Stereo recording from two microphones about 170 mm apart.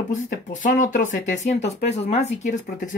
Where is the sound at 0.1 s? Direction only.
50° left (ahead or behind).